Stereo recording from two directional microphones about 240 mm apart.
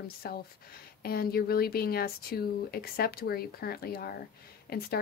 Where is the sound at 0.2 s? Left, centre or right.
Left.